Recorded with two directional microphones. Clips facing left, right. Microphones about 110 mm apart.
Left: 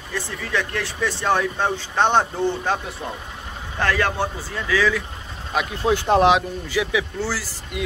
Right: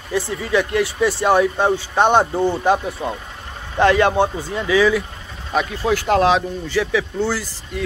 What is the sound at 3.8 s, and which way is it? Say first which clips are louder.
A man's voice: right 7 dB; 20° right (ahead or behind).